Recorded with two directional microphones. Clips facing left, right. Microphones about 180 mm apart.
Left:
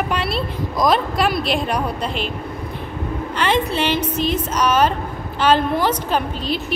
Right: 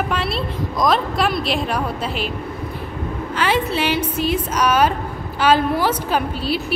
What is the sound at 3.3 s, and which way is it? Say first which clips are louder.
A woman's voice: even; 5° right (ahead or behind).